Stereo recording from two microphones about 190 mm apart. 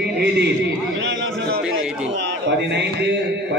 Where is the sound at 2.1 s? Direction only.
65° right (ahead or behind).